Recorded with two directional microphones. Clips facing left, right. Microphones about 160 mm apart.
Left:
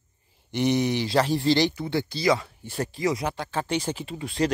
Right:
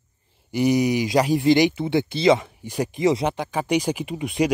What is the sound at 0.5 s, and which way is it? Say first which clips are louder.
Speech: right 4 dB; 10° right (ahead or behind).